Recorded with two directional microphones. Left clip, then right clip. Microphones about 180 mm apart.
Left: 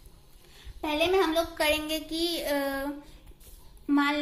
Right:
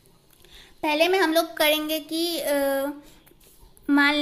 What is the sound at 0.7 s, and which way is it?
Speech, 50° right (ahead or behind).